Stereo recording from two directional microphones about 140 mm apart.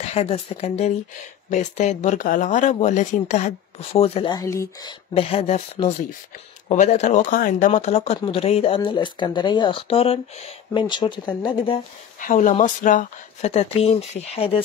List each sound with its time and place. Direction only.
0.1 s speech: 45° left (ahead or behind)
2.1 s speech: 75° left (ahead or behind); by 4.3 s 45° left (ahead or behind)
4.3 s speech: 25° left (ahead or behind)
5.1 s speech: 45° left (ahead or behind)
6.7 s speech: 55° left (ahead or behind); by 11.8 s 35° left (ahead or behind)
12.2 s speech: 70° left (ahead or behind)
13.5 s speech: 45° left (ahead or behind)